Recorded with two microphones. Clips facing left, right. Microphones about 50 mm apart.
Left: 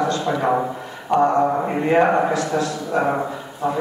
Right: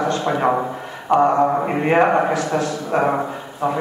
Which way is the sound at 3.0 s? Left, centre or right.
Right.